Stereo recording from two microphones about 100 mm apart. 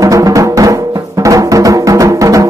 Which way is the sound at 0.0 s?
35° right (ahead or behind).